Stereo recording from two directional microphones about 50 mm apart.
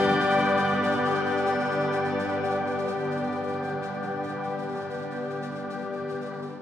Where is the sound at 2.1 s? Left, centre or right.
Right.